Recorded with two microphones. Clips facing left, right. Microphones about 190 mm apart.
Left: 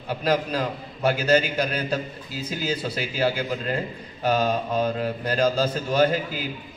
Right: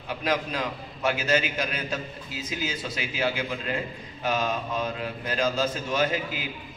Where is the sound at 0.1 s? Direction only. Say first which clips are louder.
Left 4 dB; 35° left (ahead or behind).